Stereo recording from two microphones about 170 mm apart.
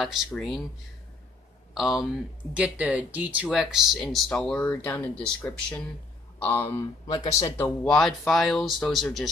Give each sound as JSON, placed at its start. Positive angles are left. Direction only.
{"t": 0.0, "sound": "speech", "side_deg": 0}
{"t": 1.7, "sound": "speech", "side_deg": 0}
{"t": 7.8, "sound": "speech", "side_deg": 5}